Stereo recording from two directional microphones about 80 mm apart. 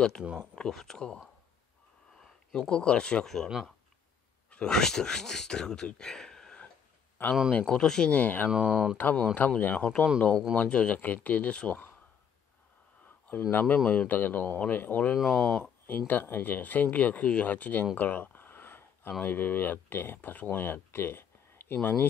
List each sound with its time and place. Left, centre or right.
0.6 s speech: centre
2.5 s speech: centre
4.5 s speech: centre
7.2 s speech: left
7.5 s speech: centre
8.1 s speech: left
8.5 s speech: centre
8.9 s speech: centre
13.3 s speech: left
15.1 s speech: centre
15.5 s speech: left
17.9 s a sound: left
19.2 s speech: left